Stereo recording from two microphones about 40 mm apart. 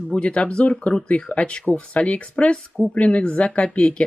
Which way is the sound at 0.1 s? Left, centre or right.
Left.